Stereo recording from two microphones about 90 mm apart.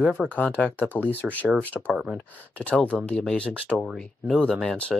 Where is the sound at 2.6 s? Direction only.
15° left (ahead or behind).